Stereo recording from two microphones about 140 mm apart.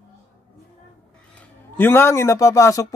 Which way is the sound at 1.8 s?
15° left (ahead or behind).